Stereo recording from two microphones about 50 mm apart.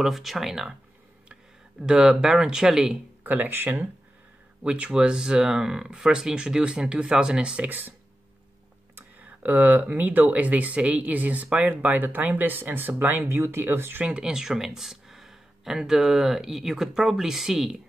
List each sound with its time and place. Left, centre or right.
0.0 s speech: centre
1.8 s speech: centre
3.3 s speech: right
4.6 s speech: right
7.6 s speech: right
9.2 s speech: right
14.0 s speech: centre